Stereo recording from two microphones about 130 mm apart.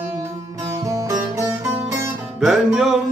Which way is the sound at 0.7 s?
25° right (ahead or behind).